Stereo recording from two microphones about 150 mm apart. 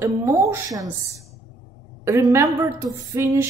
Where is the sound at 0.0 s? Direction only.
20° right (ahead or behind).